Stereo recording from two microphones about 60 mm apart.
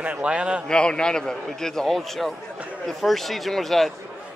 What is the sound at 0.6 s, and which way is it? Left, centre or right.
Speech, centre.